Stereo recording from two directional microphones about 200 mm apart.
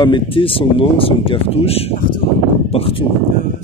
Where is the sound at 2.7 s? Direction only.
30° left (ahead or behind).